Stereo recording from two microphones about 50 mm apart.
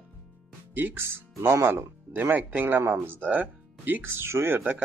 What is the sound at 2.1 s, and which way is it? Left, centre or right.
Speech, right.